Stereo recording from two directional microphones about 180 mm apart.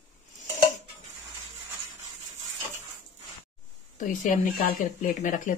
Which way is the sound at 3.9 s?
45° left (ahead or behind).